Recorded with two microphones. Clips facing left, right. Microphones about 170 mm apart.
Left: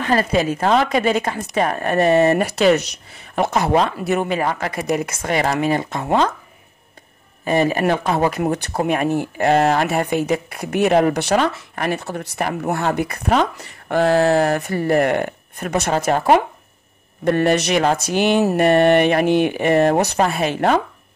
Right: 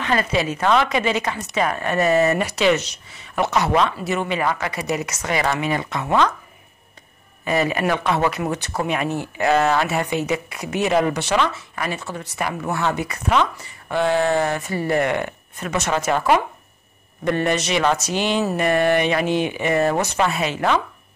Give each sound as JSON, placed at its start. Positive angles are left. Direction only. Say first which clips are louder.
{"t": 0.0, "sound": "speech", "louder": "left 3 dB", "side_deg": 40}
{"t": 2.3, "sound": "speech", "louder": "left 3 dB", "side_deg": 50}
{"t": 4.9, "sound": "speech", "louder": "left 4 dB", "side_deg": 50}
{"t": 7.4, "sound": "speech", "louder": "left 3 dB", "side_deg": 40}
{"t": 8.4, "sound": "speech", "louder": "left 4 dB", "side_deg": 55}
{"t": 8.8, "sound": "speech", "louder": "left 5 dB", "side_deg": 45}
{"t": 9.8, "sound": "speech", "louder": "left 3 dB", "side_deg": 50}
{"t": 11.1, "sound": "speech", "louder": "left 3 dB", "side_deg": 40}
{"t": 13.9, "sound": "speech", "louder": "left 4 dB", "side_deg": 40}
{"t": 17.6, "sound": "speech", "louder": "left 2 dB", "side_deg": 60}